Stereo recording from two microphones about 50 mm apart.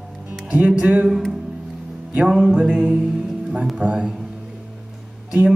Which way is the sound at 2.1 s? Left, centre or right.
Right.